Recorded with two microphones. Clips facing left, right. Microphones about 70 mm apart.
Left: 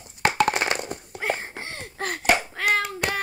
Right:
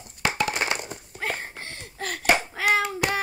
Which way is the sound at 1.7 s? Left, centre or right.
Left.